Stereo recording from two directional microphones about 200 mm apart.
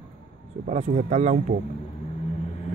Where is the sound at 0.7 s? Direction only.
35° right (ahead or behind).